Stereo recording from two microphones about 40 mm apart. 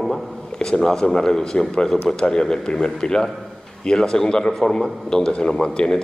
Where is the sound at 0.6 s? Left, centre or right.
Centre.